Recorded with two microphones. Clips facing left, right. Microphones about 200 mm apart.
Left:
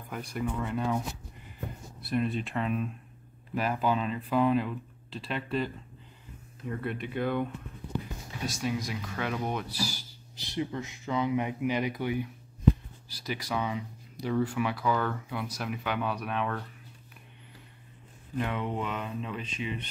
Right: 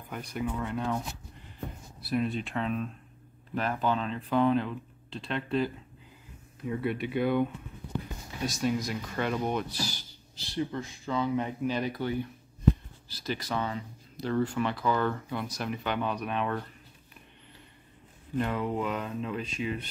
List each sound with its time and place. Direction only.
0.1 s speech: centre (ahead or behind)
6.7 s speech: 5° right (ahead or behind)
8.5 s speech: centre (ahead or behind)
18.4 s speech: centre (ahead or behind)